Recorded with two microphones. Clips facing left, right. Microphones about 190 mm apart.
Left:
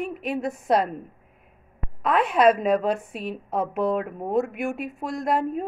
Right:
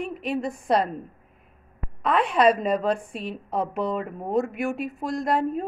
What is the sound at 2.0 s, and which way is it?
A woman's voice, centre (ahead or behind).